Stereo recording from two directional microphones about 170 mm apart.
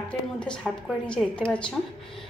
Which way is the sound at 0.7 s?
Centre (ahead or behind).